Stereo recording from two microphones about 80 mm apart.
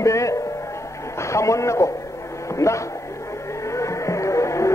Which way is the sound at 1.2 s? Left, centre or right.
Left.